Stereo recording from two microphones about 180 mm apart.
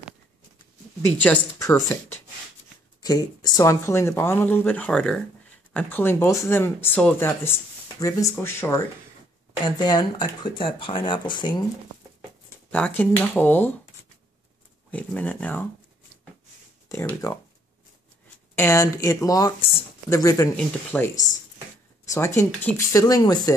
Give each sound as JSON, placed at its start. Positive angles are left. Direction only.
{"t": 1.2, "sound": "speech", "side_deg": 10}
{"t": 12.7, "sound": "speech", "side_deg": 10}
{"t": 14.9, "sound": "speech", "side_deg": 10}
{"t": 16.9, "sound": "speech", "side_deg": 15}
{"t": 18.5, "sound": "speech", "side_deg": 15}